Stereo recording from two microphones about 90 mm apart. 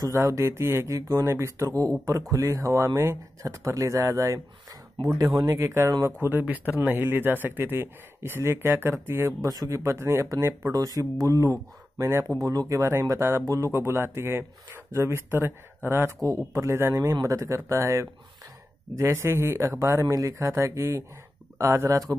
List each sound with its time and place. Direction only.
0.0 s speech: 35° right (ahead or behind)
6.2 s speech: 20° right (ahead or behind)
9.4 s speech: 40° right (ahead or behind)
9.8 s speech: 30° right (ahead or behind)
10.7 s speech: 40° right (ahead or behind); by 16.2 s 25° right (ahead or behind)
16.2 s speech: 35° right (ahead or behind)